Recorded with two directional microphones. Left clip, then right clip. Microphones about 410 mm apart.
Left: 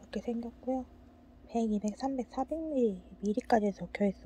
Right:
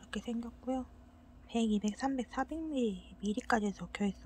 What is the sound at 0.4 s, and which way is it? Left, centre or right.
Speech, centre.